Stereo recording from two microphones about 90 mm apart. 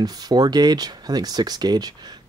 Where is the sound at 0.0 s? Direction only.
50° right (ahead or behind).